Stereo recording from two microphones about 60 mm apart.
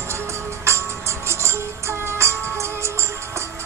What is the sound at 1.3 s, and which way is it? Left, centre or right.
Music, right.